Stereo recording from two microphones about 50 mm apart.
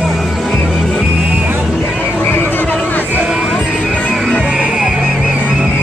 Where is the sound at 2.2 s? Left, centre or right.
Left.